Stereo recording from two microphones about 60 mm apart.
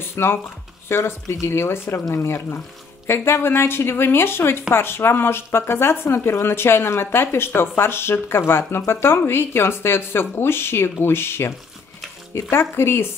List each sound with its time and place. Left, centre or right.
0.1 s speech: left